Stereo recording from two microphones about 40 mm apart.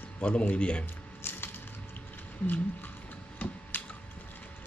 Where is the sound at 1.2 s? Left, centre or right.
Left.